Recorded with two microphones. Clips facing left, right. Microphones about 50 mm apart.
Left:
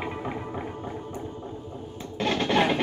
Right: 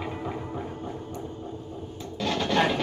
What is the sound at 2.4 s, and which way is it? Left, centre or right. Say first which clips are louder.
Music: left 1 dB; centre.